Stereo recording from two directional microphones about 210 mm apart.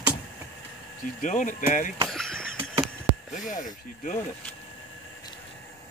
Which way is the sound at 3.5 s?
35° left (ahead or behind).